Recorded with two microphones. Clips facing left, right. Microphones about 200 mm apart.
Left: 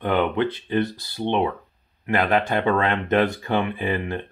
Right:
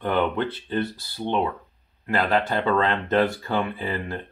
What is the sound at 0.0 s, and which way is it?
Speech, 15° left (ahead or behind).